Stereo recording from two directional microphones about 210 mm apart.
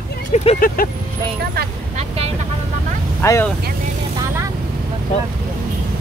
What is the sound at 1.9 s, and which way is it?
Vehicle, 30° right (ahead or behind).